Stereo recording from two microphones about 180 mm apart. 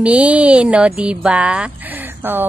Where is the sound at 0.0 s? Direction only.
5° right (ahead or behind).